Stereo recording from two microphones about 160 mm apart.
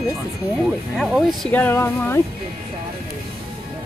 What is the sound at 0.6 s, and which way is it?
Speech, centre (ahead or behind).